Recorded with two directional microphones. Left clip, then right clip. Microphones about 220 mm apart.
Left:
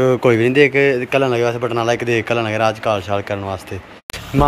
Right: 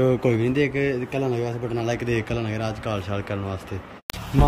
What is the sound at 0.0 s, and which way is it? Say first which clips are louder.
A man's voice: left 7 dB; 5° right (ahead or behind).